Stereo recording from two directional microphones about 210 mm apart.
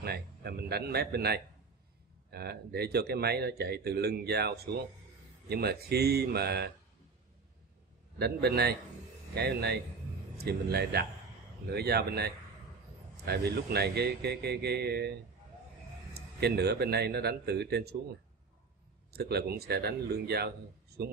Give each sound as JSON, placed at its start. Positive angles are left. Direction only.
{"t": 0.0, "sound": "speech", "side_deg": -50}
{"t": 8.2, "sound": "speech", "side_deg": -50}
{"t": 19.1, "sound": "speech", "side_deg": -50}